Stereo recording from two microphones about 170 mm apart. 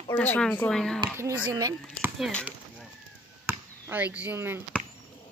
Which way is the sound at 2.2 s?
5° left (ahead or behind).